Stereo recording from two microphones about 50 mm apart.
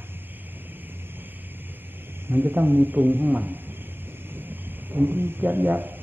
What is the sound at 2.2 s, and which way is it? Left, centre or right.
A man's voice, right.